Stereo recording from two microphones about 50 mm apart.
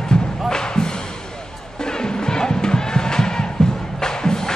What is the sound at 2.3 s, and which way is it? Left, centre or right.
Music, centre.